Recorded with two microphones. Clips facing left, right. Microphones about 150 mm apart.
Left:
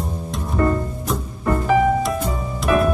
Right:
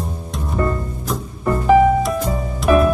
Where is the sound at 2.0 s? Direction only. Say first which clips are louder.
Right 2 dB; centre (ahead or behind).